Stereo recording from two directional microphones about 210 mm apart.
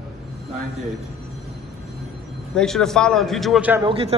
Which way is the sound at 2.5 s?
Centre (ahead or behind).